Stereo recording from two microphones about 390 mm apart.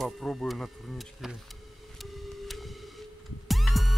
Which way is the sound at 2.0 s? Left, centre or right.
Centre.